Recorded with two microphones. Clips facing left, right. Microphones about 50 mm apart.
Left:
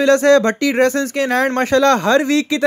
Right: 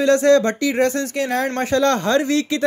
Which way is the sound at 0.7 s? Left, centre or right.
Left.